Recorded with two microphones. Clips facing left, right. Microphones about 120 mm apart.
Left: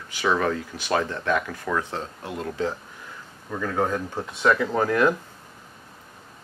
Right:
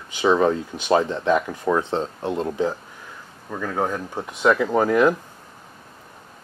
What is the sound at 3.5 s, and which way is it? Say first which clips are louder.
Speech: even; 10° right (ahead or behind).